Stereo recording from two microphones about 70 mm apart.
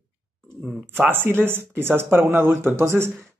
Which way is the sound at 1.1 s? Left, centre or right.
Right.